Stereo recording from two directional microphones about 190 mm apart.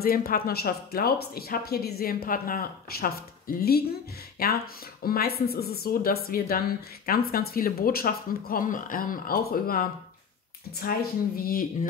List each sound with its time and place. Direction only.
0.0 s speech: 50° left (ahead or behind)